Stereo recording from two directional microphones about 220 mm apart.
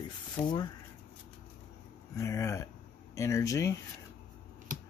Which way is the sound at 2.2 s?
15° left (ahead or behind).